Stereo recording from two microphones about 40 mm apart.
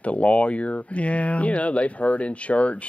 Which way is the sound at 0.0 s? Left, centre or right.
Left.